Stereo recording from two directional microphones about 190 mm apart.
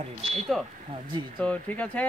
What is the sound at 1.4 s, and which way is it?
Speech, 10° left (ahead or behind).